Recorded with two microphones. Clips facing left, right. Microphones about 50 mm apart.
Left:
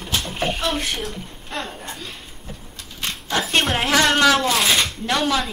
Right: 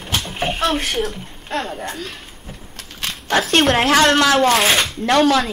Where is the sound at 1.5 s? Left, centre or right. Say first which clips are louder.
Right 6 dB; right.